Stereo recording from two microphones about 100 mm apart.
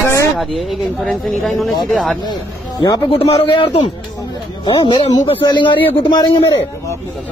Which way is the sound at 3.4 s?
60° left (ahead or behind).